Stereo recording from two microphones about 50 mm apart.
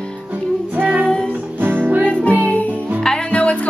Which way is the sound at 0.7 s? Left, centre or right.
Right.